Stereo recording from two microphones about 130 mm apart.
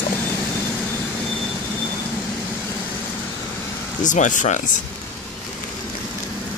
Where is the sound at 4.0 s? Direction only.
75° left (ahead or behind).